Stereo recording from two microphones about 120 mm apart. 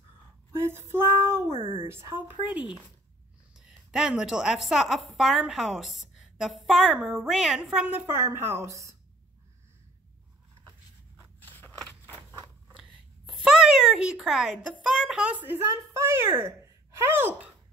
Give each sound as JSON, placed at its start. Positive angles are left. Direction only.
{"t": 0.5, "sound": "a sound", "side_deg": -20}
{"t": 0.9, "sound": "child singing", "side_deg": -20}
{"t": 1.5, "sound": "speech", "side_deg": -50}
{"t": 1.9, "sound": "a woman's voice", "side_deg": -20}
{"t": 13.3, "sound": "speech", "side_deg": -5}